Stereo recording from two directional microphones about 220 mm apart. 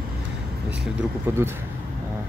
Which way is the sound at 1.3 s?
10° right (ahead or behind).